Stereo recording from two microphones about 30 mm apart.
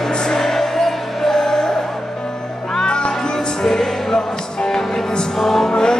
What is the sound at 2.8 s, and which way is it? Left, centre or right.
Music, left.